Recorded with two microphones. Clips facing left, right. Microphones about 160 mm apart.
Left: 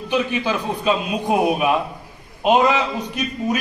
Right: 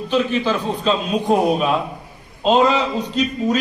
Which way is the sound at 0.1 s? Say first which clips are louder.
Right 2 dB; 15° left (ahead or behind).